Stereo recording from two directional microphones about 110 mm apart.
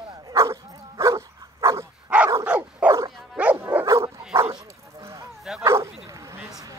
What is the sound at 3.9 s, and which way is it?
Dog, 25° right (ahead or behind).